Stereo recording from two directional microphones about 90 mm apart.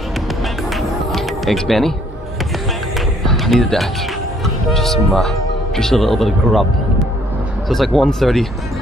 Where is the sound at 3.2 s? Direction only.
5° left (ahead or behind).